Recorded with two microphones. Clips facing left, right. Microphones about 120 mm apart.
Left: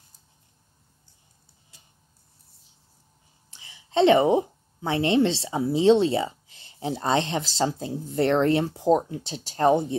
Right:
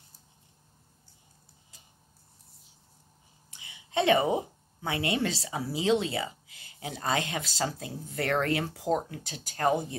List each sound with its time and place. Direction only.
3.9 s a woman's voice: 25° left (ahead or behind)